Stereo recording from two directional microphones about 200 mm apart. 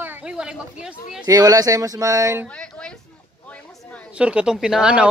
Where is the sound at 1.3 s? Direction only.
20° right (ahead or behind).